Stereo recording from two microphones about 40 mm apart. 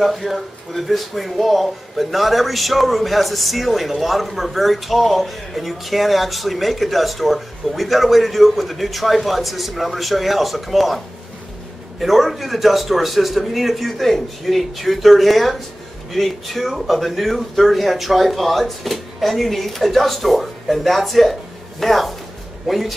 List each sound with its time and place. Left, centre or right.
0.0 s speech: centre
12.0 s speech: centre